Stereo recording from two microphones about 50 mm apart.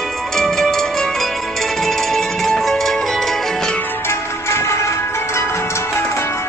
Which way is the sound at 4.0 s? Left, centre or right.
Left.